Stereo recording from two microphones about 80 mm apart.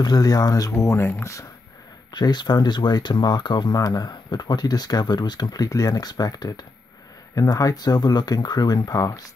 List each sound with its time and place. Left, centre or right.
0.0 s speech: left
2.1 s speech: left
3.7 s speech: left